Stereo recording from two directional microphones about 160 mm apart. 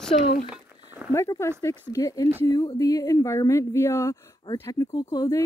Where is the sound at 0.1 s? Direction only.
40° left (ahead or behind).